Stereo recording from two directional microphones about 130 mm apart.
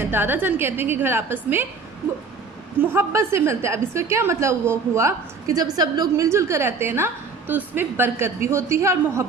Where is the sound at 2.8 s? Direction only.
20° right (ahead or behind).